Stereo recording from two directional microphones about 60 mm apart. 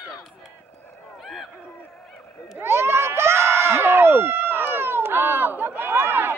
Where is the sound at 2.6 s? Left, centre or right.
Right.